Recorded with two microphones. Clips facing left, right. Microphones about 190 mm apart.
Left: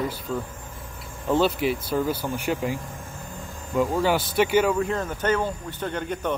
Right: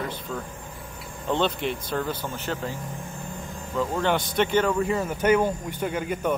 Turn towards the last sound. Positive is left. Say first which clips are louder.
# right 1 dB
turn(degrees=-5)  # may be behind; listen again after turning